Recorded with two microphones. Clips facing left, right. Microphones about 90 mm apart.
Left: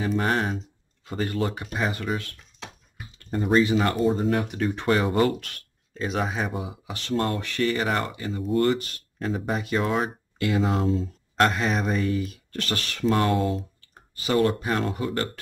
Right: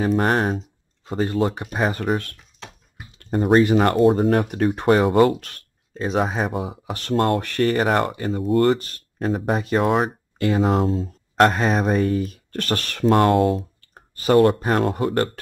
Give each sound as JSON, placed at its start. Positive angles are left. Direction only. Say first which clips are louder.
{"t": 0.0, "sound": "speech", "louder": "right 5 dB", "side_deg": -45}
{"t": 1.0, "sound": "speech", "louder": "right 5 dB", "side_deg": -30}
{"t": 2.6, "sound": "typing", "louder": "right 1 dB", "side_deg": 0}
{"t": 3.3, "sound": "speech", "louder": "right 5 dB", "side_deg": -60}
{"t": 9.8, "sound": "speech", "louder": "right 6 dB", "side_deg": -45}